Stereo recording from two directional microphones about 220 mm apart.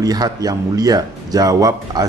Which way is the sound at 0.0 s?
15° right (ahead or behind).